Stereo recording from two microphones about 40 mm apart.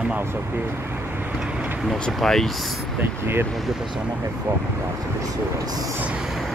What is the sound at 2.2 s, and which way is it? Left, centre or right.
Speech, centre.